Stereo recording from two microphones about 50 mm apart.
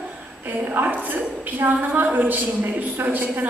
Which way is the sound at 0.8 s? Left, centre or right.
Right.